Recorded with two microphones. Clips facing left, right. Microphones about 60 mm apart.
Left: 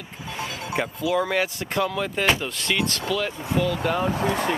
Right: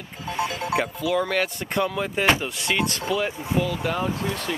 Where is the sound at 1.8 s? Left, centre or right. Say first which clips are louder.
Even; centre.